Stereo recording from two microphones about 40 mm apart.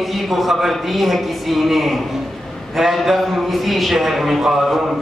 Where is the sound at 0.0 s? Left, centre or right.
Centre.